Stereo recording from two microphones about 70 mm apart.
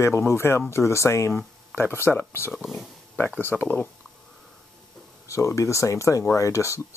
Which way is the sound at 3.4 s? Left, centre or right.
Left.